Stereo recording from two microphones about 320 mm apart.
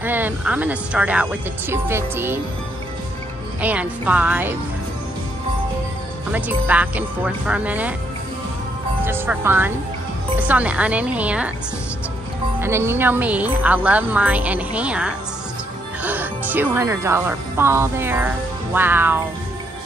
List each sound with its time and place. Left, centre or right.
0.0 s a woman's voice: centre
3.6 s a woman's voice: centre
6.3 s a woman's voice: centre
9.0 s a woman's voice: centre
12.5 s a woman's voice: centre